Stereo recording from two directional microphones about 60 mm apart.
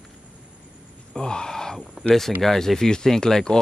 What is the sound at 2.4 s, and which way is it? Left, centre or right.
Speech, centre.